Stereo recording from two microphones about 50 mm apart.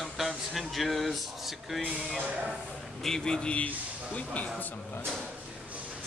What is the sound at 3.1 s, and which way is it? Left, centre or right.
A man's voice, centre.